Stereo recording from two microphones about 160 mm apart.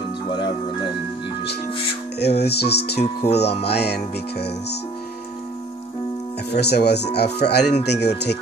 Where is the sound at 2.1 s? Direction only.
90° left.